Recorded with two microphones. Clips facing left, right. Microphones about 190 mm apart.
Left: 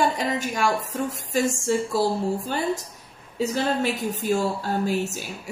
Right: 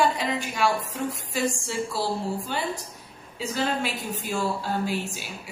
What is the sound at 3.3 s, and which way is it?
A woman's voice, 40° left (ahead or behind).